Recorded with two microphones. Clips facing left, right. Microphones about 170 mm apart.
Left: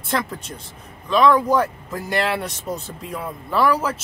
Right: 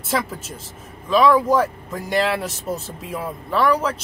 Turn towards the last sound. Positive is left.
turn(degrees=5)  # may be behind; listen again after turning